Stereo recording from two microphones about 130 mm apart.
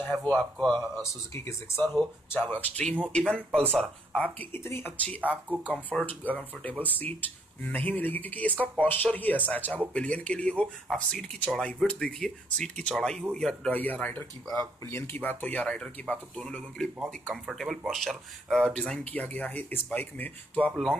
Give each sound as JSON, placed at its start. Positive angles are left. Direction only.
{"t": 0.0, "sound": "speech", "side_deg": 10}
{"t": 1.0, "sound": "speech", "side_deg": 20}
{"t": 5.3, "sound": "speech", "side_deg": -10}
{"t": 5.9, "sound": "speech", "side_deg": 10}